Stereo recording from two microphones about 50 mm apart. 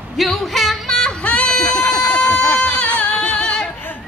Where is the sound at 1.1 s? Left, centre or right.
Left.